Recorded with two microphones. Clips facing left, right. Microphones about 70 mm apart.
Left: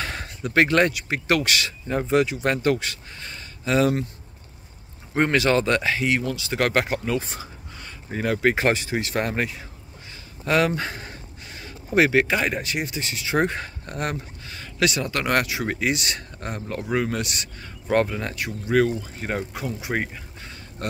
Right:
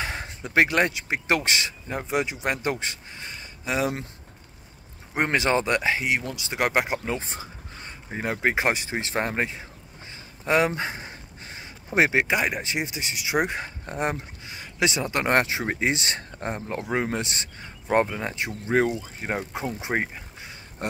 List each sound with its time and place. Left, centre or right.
0.0 s speech: centre
1.9 s speech: centre
5.1 s speech: centre